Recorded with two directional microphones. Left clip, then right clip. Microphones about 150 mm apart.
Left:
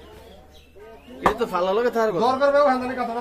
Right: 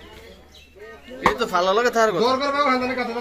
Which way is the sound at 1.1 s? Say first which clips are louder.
Right 2 dB; 10° left (ahead or behind).